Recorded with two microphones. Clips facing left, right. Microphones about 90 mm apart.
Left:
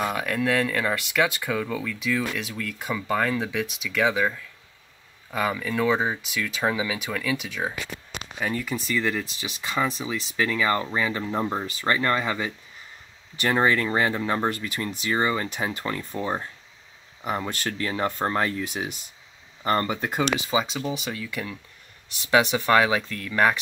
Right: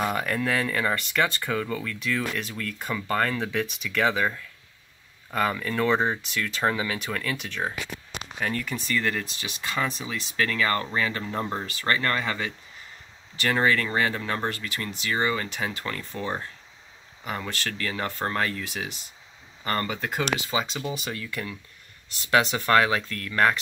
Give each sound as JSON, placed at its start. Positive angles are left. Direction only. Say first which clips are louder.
{"t": 0.0, "sound": "speech", "louder": "left 1 dB", "side_deg": 0}